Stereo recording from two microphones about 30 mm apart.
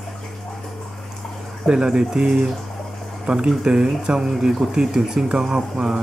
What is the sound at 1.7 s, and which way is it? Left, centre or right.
Speech, right.